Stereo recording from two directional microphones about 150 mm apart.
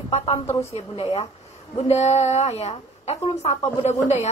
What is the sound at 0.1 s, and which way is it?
A woman's voice, 45° left (ahead or behind).